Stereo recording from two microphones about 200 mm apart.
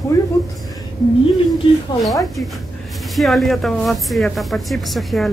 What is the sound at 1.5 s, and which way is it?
Speech, centre (ahead or behind).